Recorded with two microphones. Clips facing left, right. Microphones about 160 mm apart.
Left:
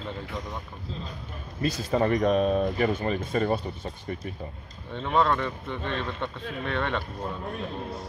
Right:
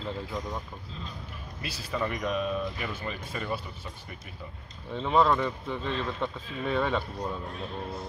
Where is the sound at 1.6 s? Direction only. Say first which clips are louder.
Left 8 dB; 45° left (ahead or behind).